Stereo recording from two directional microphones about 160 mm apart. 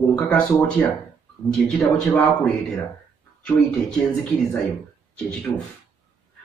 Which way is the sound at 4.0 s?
10° left (ahead or behind).